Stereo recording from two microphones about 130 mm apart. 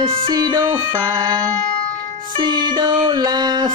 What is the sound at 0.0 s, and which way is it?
Music, 40° right (ahead or behind).